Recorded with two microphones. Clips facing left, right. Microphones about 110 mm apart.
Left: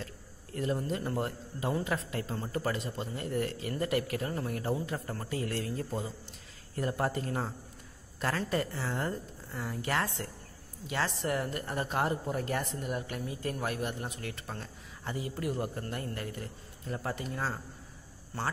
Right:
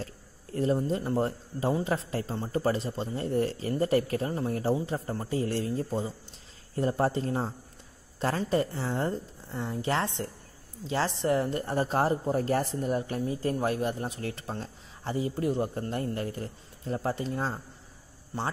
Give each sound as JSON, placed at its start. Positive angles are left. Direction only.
{"t": 0.7, "sound": "a woman's voice", "side_deg": -25}